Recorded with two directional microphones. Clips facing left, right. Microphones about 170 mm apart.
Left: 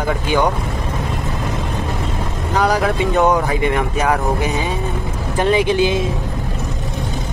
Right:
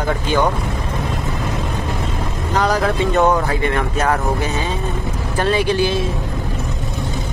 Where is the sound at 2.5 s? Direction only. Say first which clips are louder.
Left 1 dB; 10° left (ahead or behind).